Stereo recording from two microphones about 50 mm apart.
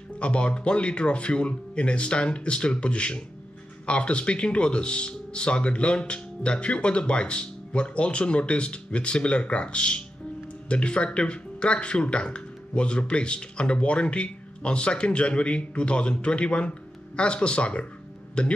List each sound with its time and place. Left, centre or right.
0.2 s speech: left